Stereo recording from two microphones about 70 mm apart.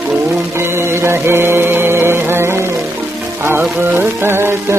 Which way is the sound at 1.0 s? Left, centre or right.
Right.